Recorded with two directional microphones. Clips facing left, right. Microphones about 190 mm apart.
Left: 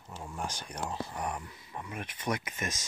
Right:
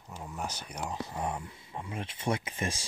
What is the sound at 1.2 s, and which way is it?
Speech, 25° right (ahead or behind).